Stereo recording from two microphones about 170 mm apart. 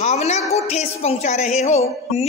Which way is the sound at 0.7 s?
40° left (ahead or behind).